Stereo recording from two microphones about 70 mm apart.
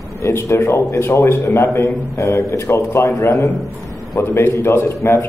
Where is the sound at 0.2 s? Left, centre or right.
Left.